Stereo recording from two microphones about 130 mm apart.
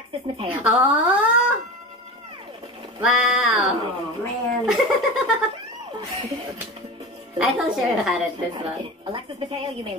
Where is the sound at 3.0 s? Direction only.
5° right (ahead or behind).